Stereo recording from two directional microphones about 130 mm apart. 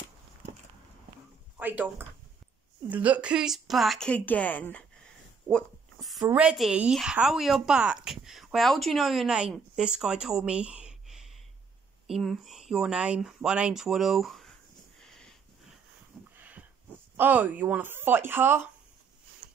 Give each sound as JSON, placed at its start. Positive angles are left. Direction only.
{"t": 1.6, "sound": "speech", "side_deg": -15}
{"t": 5.5, "sound": "a sound", "side_deg": 0}
{"t": 6.2, "sound": "speech", "side_deg": -10}
{"t": 15.0, "sound": "sniff", "side_deg": 5}
{"t": 16.3, "sound": "a sound", "side_deg": -10}
{"t": 17.2, "sound": "speech", "side_deg": -15}